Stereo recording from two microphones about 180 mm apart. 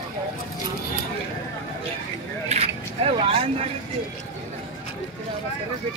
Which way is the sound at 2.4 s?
35° right (ahead or behind).